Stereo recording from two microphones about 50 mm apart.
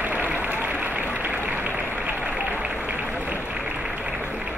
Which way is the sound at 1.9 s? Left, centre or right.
Right.